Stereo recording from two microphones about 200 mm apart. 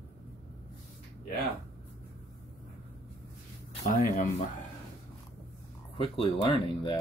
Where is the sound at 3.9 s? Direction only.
45° left (ahead or behind).